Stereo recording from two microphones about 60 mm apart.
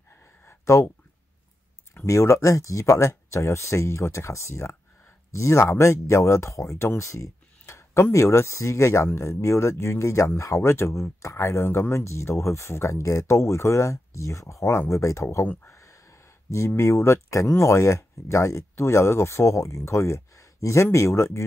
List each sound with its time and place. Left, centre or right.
0.7 s speech: left
2.0 s speech: left
12.9 s speech: left
15.7 s a sound: left
17.6 s speech: left